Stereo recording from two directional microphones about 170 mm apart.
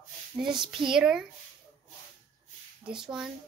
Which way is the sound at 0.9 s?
5° right (ahead or behind).